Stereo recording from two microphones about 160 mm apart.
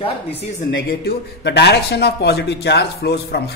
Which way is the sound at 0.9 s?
90° left.